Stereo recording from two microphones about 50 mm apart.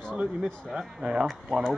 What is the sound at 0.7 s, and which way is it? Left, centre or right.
Speech, centre.